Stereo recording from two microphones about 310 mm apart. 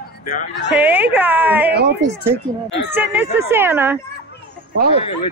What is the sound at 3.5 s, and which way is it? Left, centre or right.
Speech, centre.